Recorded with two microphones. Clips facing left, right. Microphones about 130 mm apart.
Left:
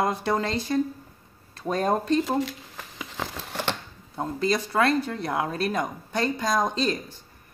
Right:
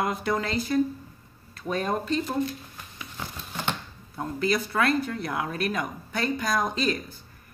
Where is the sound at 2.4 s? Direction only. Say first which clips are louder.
Even; 90° left; by 3.8 s 70° left (ahead or behind).